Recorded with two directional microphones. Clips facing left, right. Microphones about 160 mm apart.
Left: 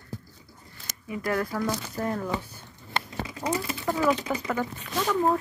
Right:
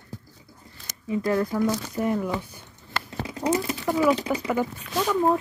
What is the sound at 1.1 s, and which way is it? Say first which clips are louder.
Speech: right 4 dB; 25° right (ahead or behind).